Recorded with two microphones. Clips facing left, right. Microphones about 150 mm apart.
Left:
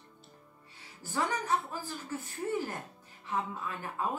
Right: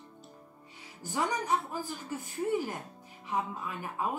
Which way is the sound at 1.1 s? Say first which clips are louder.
Right 1 dB; 15° right (ahead or behind).